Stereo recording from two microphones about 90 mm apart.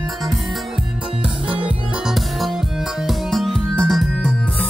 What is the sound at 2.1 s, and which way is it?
Music, centre (ahead or behind).